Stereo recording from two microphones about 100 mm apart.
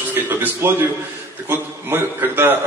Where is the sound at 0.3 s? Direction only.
20° right (ahead or behind).